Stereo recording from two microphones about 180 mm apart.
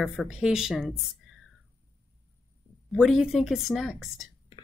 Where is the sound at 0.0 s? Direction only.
Centre (ahead or behind).